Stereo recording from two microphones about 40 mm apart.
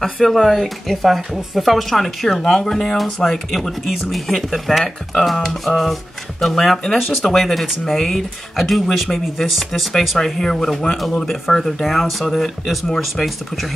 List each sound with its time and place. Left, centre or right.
0.0 s speech: centre
3.8 s speech: centre
10.2 s speech: centre